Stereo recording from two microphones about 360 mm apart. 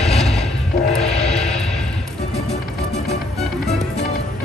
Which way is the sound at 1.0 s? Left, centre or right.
Centre.